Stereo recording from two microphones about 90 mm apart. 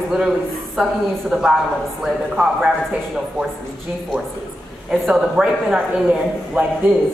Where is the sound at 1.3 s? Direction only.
5° right (ahead or behind).